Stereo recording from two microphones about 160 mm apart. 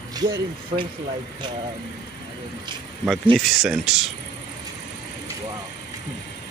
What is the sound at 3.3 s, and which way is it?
Speech, 5° right (ahead or behind).